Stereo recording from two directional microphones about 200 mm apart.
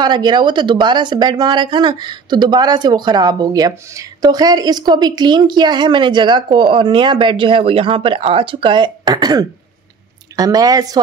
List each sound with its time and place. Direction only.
0.0 s speech: 20° right (ahead or behind)